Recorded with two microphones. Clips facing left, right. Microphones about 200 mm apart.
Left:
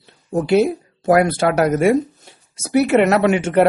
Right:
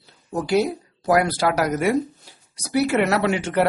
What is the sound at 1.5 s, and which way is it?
Speech, 25° left (ahead or behind).